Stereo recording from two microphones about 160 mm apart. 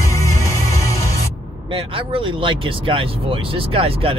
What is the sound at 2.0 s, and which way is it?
Speech, 35° right (ahead or behind).